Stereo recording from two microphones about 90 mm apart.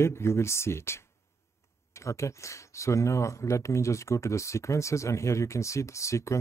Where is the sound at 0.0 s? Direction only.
30° left (ahead or behind).